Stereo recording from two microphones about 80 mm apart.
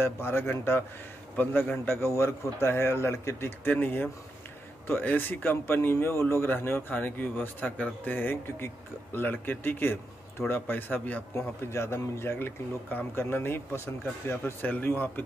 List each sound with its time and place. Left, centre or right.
0.0 s a man's voice: left